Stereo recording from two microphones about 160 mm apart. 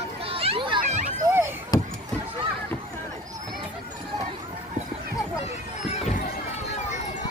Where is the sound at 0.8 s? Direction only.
50° right (ahead or behind).